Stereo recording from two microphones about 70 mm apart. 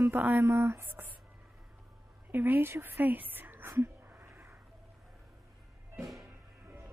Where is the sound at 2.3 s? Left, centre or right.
Right.